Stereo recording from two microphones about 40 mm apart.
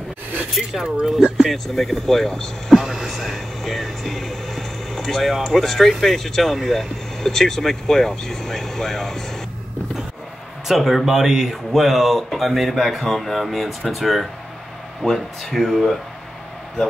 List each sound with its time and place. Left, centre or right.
0.8 s speech: right
1.4 s speech: centre
2.7 s music: centre
10.7 s speech: centre